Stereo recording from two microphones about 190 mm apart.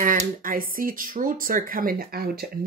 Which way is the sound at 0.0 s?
45° right (ahead or behind).